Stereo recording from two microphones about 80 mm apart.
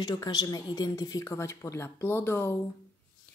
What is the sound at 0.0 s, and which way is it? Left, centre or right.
Speech, left.